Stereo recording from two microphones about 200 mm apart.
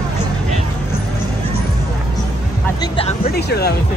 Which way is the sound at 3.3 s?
55° left (ahead or behind).